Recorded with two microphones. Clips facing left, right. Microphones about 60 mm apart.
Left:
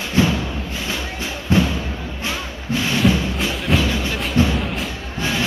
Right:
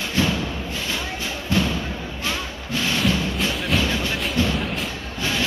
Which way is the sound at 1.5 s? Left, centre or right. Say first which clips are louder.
Left 5 dB; left.